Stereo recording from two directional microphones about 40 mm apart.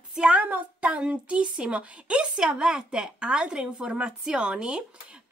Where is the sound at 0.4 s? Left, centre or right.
Right.